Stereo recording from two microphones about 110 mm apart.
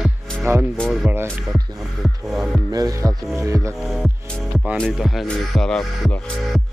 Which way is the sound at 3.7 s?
Centre (ahead or behind).